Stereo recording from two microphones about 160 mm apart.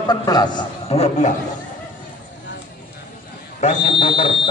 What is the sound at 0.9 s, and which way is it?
Speech, 45° left (ahead or behind).